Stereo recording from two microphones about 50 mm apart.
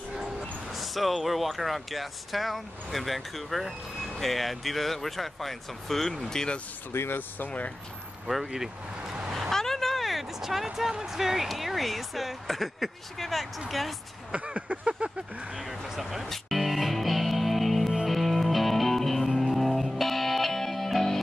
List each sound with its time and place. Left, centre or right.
0.4 s speech: centre
6.9 s speech: left
7.4 s speech: left
8.3 s speech: centre
9.5 s speech: centre
14.3 s a sound: right
15.5 s speech: centre
16.3 s music: centre